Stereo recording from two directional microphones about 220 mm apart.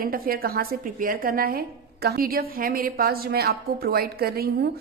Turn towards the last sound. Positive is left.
turn(degrees=-45)  # may be behind; listen again after turning